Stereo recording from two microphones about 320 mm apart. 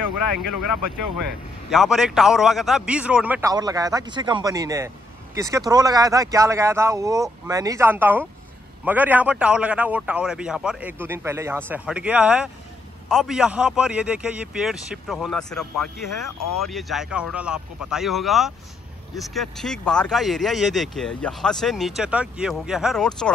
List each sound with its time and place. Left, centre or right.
1.7 s a man's voice: centre
16.3 s speech: left
16.6 s speech: centre